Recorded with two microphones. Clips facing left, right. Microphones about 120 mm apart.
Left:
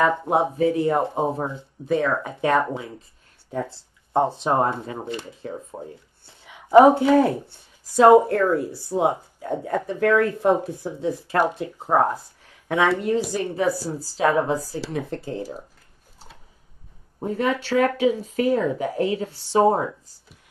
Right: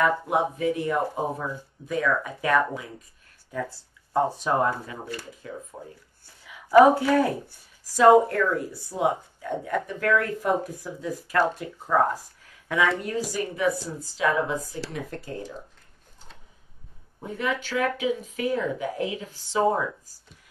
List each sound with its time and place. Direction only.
0.0 s speech: 30° left (ahead or behind)
17.2 s speech: 35° left (ahead or behind)